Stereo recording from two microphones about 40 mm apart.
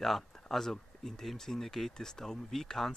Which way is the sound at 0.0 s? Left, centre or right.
Centre.